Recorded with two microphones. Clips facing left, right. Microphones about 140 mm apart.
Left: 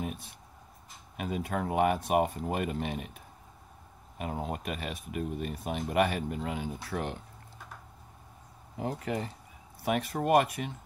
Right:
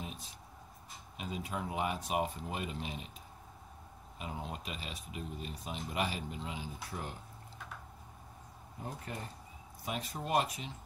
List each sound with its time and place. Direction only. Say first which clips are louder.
0.0 s writing: left 8 dB; 55° left (ahead or behind)
1.1 s speech: left 7 dB; 55° left (ahead or behind)
4.2 s speech: left 7 dB; 50° left (ahead or behind); by 7.2 s 70° left (ahead or behind)
8.7 s speech: left 10 dB; 90° left
9.8 s speech: left 10 dB; 65° left (ahead or behind)